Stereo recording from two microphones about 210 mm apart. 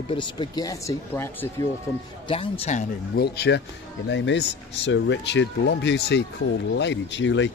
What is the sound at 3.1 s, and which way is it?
Speech, 50° left (ahead or behind).